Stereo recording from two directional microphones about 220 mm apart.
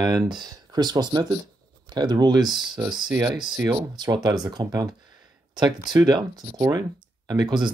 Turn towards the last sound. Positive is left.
turn(degrees=-20)  # may be behind; listen again after turning